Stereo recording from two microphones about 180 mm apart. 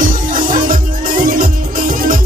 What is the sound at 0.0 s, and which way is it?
Music, 50° right (ahead or behind).